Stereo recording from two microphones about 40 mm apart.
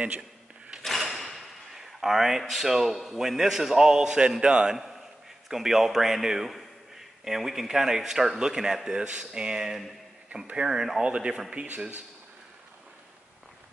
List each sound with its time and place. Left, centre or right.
0.8 s speech: centre; by 11.4 s right